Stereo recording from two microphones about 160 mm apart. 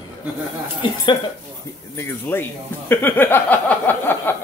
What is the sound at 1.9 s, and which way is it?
Speech, 15° left (ahead or behind).